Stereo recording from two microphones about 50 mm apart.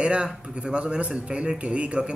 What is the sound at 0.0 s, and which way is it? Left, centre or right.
Speech, right.